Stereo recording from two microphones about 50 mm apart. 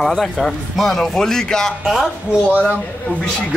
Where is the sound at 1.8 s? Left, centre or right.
Centre.